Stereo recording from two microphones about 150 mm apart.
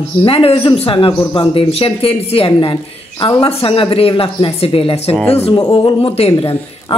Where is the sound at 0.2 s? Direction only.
40° left (ahead or behind).